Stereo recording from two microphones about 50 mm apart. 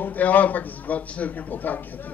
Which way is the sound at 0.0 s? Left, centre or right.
Left.